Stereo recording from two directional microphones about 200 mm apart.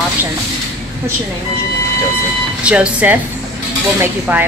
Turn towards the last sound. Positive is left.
turn(degrees=-10)  # may be behind; listen again after turning